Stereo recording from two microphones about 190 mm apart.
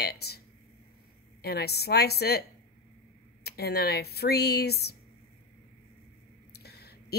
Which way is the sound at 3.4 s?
55° left (ahead or behind).